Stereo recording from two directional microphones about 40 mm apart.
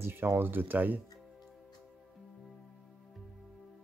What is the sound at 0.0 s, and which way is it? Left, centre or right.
Speech, right.